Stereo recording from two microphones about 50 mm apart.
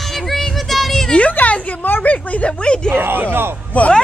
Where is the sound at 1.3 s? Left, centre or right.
Left.